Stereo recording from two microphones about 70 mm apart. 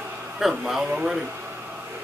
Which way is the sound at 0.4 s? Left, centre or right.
Centre.